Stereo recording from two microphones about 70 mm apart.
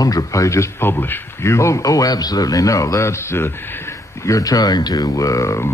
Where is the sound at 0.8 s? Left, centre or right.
Left.